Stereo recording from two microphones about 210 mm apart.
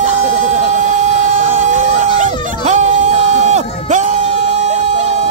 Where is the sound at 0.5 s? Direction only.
35° right (ahead or behind).